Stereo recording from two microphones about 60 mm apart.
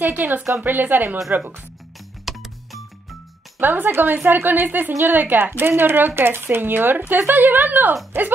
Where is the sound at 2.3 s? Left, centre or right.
Centre.